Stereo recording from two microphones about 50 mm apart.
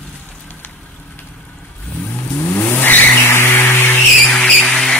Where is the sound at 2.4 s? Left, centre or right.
Left.